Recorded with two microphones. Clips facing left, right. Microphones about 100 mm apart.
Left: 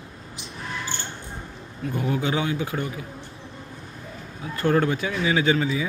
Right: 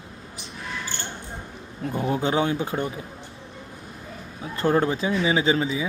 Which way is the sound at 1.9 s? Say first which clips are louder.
Right 2 dB; 25° right (ahead or behind).